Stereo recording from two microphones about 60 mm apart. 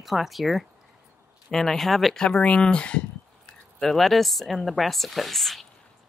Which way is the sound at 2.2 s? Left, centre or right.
Centre.